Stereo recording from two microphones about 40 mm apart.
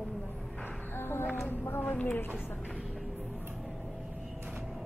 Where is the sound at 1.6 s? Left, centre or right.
Left.